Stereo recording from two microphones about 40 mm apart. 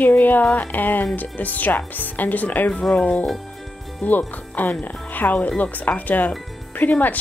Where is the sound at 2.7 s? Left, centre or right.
Left.